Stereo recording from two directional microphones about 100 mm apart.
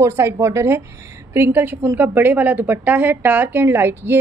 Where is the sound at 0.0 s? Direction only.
25° right (ahead or behind).